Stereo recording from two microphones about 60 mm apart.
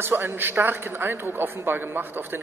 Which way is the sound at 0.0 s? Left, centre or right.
Right.